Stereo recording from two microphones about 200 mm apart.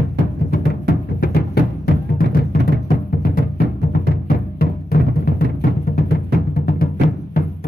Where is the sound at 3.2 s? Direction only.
45° left (ahead or behind).